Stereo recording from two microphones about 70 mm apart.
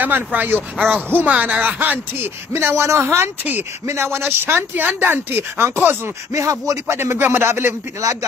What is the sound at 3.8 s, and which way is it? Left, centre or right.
Speech, right.